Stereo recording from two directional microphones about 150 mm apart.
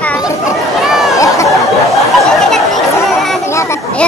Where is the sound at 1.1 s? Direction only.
20° left (ahead or behind).